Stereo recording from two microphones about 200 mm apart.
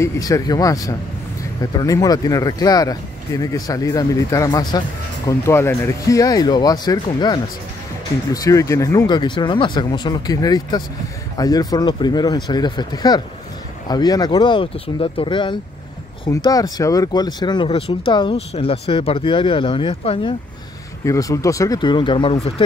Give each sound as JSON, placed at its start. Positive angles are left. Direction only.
{"t": 0.0, "sound": "speech", "side_deg": 15}